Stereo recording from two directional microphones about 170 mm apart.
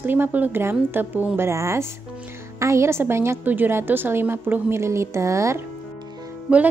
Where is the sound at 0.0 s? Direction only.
10° right (ahead or behind).